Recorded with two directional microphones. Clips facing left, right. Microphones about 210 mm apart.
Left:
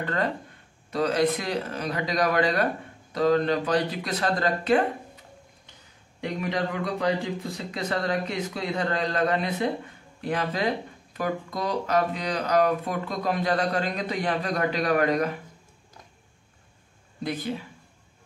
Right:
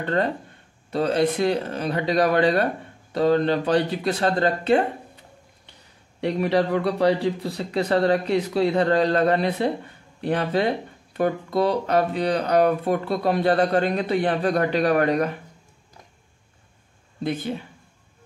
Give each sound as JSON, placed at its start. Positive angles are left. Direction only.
{"t": 0.8, "sound": "speech", "side_deg": -30}
{"t": 6.2, "sound": "speech", "side_deg": -35}
{"t": 17.2, "sound": "speech", "side_deg": -25}